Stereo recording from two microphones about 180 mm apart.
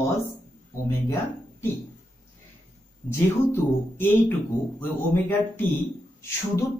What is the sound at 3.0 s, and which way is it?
Speech, 10° left (ahead or behind).